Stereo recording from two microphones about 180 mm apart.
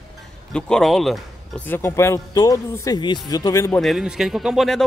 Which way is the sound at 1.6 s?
15° left (ahead or behind).